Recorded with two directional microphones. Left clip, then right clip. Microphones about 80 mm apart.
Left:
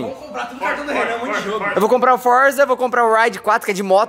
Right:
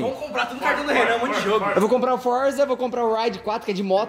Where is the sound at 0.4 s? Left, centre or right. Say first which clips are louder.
Left 1 dB; centre.